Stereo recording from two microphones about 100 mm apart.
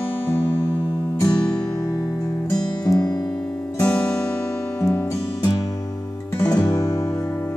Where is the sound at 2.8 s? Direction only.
40° left (ahead or behind).